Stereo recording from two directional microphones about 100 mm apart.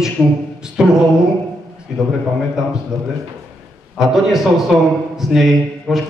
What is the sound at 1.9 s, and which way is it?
Speech, 5° right (ahead or behind).